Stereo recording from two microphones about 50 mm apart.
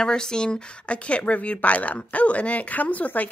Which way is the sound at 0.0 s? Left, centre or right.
Centre.